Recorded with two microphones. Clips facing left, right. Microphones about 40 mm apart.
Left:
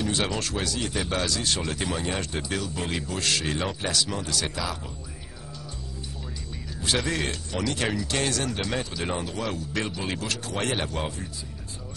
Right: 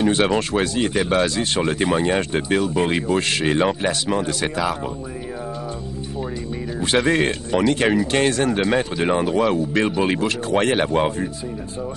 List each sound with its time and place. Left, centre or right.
0.0 s speech: right
6.8 s speech: right